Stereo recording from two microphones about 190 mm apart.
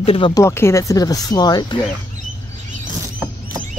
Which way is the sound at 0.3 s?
15° left (ahead or behind).